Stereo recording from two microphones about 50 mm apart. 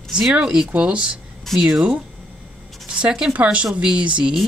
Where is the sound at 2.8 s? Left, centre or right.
Centre.